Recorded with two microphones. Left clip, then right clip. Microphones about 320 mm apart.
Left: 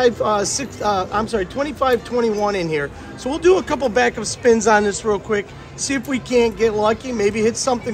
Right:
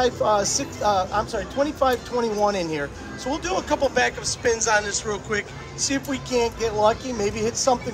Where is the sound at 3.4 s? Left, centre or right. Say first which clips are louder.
Left 8 dB; left; by 5.5 s centre.